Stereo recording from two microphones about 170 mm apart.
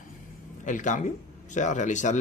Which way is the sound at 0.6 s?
50° left (ahead or behind).